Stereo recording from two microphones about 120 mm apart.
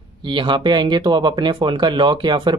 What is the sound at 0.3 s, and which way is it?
Speech, 40° right (ahead or behind).